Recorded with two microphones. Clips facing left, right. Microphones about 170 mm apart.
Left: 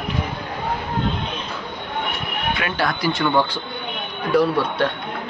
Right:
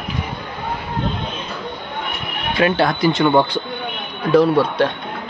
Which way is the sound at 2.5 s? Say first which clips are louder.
Right 10 dB; 30° right (ahead or behind).